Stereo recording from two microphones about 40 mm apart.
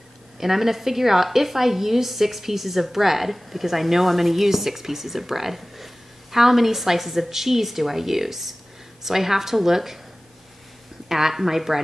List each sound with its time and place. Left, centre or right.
0.4 s a woman's voice: centre
11.1 s a woman's voice: centre